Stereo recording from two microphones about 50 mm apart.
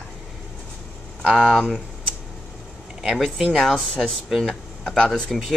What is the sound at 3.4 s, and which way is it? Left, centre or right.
Speech, centre.